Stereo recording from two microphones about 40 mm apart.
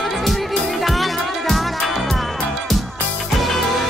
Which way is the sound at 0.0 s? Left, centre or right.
Centre.